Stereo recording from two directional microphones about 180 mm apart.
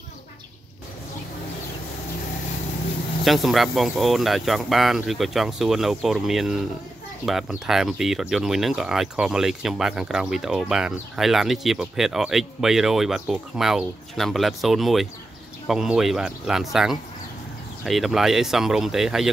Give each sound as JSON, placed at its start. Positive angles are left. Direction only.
{"t": 3.3, "sound": "speech", "side_deg": 0}